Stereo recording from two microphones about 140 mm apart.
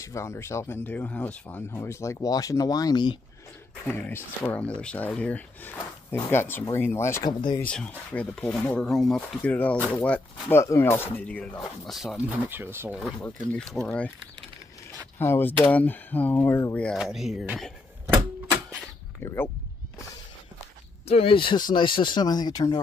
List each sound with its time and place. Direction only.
0.0 s speech: 20° left (ahead or behind)
3.8 s speech: 15° left (ahead or behind)
7.2 s speech: 30° left (ahead or behind)
7.6 s speech: 10° left (ahead or behind)
10.6 s speech: 20° left (ahead or behind); by 12.4 s centre (ahead or behind)
12.4 s speech: 15° right (ahead or behind)
13.2 s speech: 10° left (ahead or behind)
15.1 s speech: 15° left (ahead or behind)
16.8 s speech: centre (ahead or behind)
19.2 s speech: 15° left (ahead or behind)
21.1 s speech: 40° left (ahead or behind)